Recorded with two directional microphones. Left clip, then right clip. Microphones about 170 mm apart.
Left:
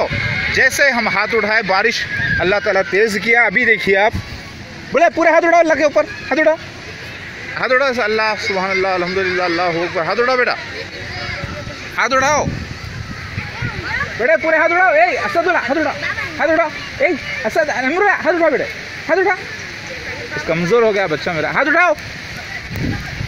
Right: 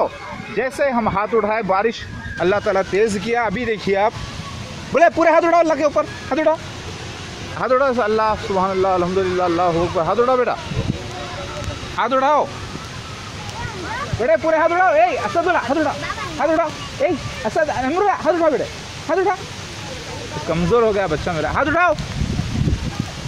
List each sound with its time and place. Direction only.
0.6 s a man's voice: 10° left (ahead or behind); by 4.1 s 45° left (ahead or behind)
4.9 s speech: 35° left (ahead or behind)
7.5 s a man's voice: 10° left (ahead or behind)
12.0 s a man's voice: 10° left (ahead or behind)
14.2 s speech: 45° left (ahead or behind)
20.4 s speech: 50° left (ahead or behind)